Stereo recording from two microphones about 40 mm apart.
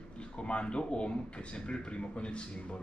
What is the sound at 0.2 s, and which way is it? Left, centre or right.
A man's voice, left.